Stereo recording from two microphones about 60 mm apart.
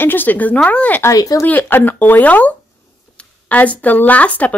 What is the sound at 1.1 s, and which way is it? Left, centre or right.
Speech, left.